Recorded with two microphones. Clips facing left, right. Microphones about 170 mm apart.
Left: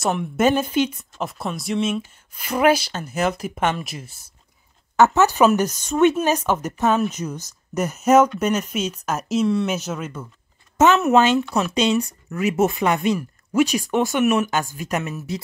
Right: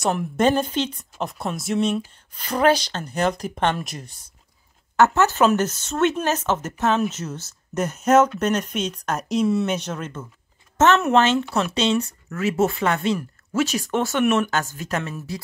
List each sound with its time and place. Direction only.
0.0 s speech: centre (ahead or behind)
4.9 s speech: 15° left (ahead or behind)